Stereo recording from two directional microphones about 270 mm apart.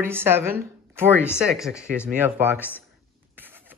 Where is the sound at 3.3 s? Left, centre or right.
Centre.